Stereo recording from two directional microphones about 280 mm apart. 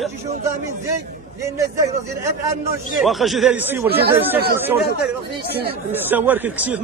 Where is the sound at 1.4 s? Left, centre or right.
Centre.